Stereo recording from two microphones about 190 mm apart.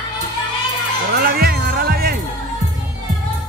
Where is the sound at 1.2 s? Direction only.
55° right (ahead or behind).